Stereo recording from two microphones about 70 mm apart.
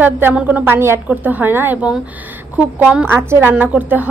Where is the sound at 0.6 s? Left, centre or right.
Right.